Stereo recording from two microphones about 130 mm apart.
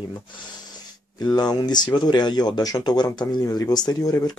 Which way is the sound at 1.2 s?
30° left (ahead or behind).